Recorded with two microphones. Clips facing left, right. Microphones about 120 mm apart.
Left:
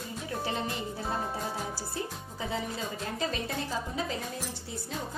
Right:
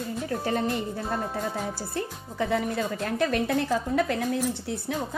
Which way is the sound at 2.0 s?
60° right (ahead or behind).